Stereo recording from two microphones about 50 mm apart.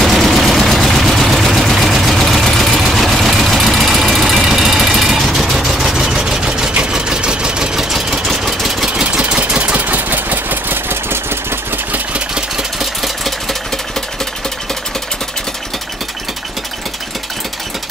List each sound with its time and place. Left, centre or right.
0.0 s vehicle: centre
8.3 s vehicle: centre
9.3 s engine: right
12.7 s engine: centre